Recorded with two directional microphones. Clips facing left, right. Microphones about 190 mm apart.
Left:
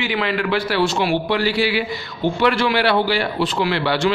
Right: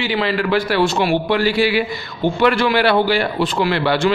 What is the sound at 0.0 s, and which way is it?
A man's voice, 30° right (ahead or behind).